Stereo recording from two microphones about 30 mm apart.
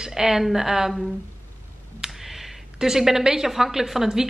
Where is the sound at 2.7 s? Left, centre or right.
Centre.